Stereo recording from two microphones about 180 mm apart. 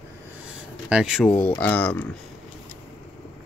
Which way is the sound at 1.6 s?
10° left (ahead or behind).